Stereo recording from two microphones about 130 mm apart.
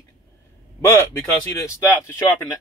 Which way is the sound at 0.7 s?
20° left (ahead or behind).